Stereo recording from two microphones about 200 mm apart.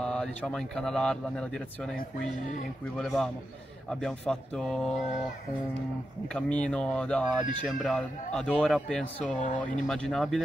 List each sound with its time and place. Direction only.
0.0 s speech: 5° left (ahead or behind)
3.0 s speech: centre (ahead or behind)
6.2 s speech: 5° left (ahead or behind)
9.2 s speech: 40° left (ahead or behind)
9.8 s speech: centre (ahead or behind)